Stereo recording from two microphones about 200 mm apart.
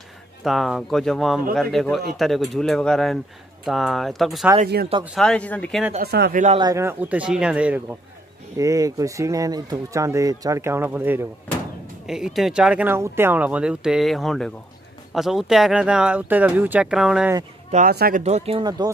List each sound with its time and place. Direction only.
0.4 s speech: centre (ahead or behind)
6.0 s speech: 55° right (ahead or behind)
6.6 s speech: 15° right (ahead or behind)
8.5 s speech: 15° right (ahead or behind)
17.6 s speech: 40° right (ahead or behind)
17.9 s speech: 50° right (ahead or behind)
18.2 s speech: 30° right (ahead or behind)